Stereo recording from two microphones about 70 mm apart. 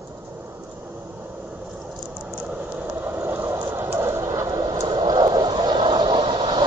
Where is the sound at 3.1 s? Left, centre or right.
Right.